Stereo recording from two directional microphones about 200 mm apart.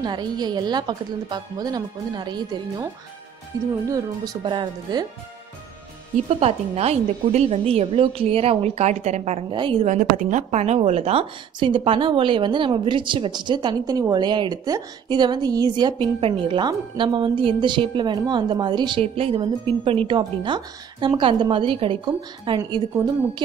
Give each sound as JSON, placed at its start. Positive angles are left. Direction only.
{"t": 0.0, "sound": "a woman's voice", "side_deg": -20}
{"t": 6.1, "sound": "a woman's voice", "side_deg": -30}
{"t": 9.8, "sound": "a woman's voice", "side_deg": -40}